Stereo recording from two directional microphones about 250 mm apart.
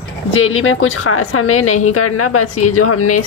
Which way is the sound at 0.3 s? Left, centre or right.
Left.